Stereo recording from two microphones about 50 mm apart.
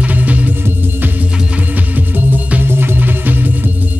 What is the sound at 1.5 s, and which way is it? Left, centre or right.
Music, right.